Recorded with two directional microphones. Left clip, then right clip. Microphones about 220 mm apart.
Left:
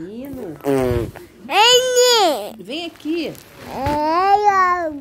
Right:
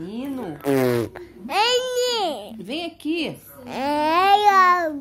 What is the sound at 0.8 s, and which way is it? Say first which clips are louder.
Speech: left 1 dB; 15° right (ahead or behind).